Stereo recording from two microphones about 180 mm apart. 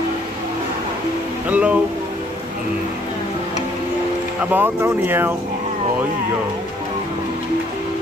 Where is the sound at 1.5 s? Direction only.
5° right (ahead or behind).